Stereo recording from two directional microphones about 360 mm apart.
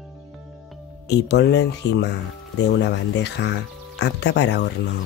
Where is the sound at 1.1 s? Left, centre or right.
Left.